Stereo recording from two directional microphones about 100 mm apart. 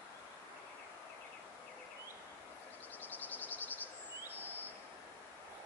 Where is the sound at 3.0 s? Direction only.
20° left (ahead or behind).